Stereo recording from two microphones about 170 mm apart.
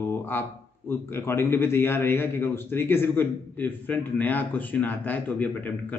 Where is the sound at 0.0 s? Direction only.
15° left (ahead or behind).